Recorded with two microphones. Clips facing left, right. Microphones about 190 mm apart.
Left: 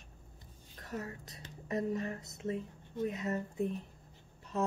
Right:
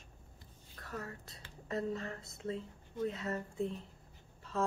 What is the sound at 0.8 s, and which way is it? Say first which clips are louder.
Speech: left 3 dB; 20° left (ahead or behind).